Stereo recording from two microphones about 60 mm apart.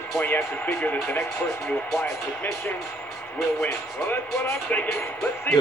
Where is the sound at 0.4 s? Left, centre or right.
Left.